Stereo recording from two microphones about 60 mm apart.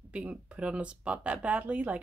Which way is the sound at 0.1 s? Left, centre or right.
Right.